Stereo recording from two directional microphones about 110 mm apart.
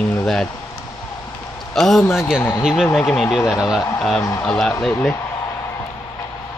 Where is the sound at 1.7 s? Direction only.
Centre (ahead or behind).